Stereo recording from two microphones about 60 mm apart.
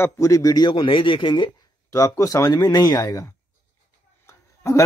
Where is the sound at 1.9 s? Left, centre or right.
Left.